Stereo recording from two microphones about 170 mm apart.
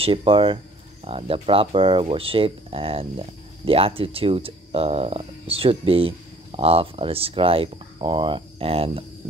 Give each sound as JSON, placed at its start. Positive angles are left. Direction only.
{"t": 0.0, "sound": "speech", "side_deg": -30}